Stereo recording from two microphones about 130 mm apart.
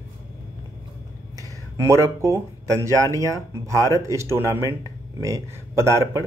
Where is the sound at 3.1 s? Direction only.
25° right (ahead or behind).